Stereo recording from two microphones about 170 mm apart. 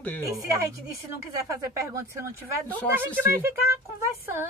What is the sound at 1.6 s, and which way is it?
Speech, 20° right (ahead or behind).